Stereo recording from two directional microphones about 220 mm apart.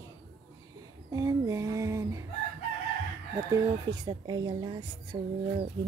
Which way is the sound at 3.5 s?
20° right (ahead or behind).